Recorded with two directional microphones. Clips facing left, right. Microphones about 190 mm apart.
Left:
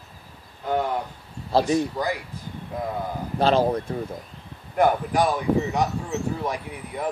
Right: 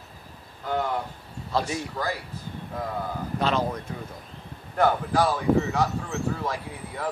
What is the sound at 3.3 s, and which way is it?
Speech, 30° left (ahead or behind).